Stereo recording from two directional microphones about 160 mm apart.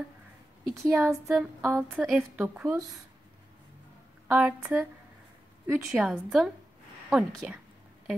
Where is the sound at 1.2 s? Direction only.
5° right (ahead or behind).